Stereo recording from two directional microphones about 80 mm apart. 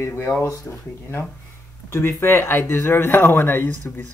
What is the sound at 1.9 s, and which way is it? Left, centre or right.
Speech, left.